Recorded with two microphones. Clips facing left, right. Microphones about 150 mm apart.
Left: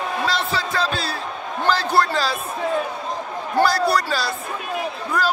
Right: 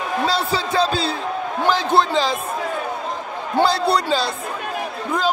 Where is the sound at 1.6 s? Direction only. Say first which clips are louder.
Right 1 dB; 20° right (ahead or behind).